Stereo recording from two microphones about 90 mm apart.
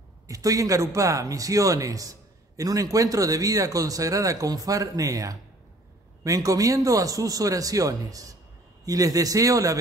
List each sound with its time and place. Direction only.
0.3 s a man's voice: 40° right (ahead or behind)